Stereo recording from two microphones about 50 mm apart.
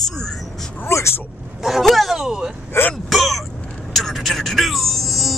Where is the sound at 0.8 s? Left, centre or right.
Left.